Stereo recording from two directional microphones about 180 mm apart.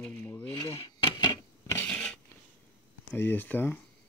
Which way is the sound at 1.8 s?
5° left (ahead or behind).